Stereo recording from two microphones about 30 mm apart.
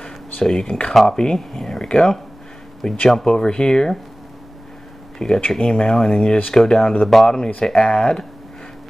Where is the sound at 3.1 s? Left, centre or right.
Centre.